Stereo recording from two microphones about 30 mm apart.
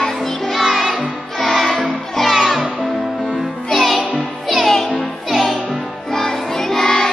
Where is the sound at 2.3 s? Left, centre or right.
Centre.